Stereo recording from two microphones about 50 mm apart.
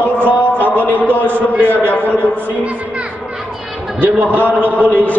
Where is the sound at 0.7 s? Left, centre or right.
Right.